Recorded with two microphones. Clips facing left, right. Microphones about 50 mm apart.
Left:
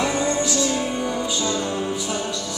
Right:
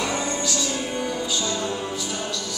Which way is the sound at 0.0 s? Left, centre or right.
Left.